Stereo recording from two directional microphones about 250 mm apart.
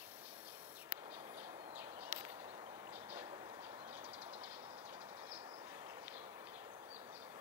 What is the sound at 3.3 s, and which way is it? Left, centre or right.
Train, right.